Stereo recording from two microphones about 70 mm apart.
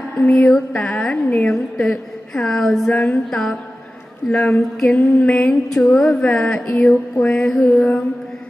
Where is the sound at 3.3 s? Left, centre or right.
Centre.